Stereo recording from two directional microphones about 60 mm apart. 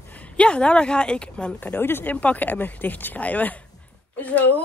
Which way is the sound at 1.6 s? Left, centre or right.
Left.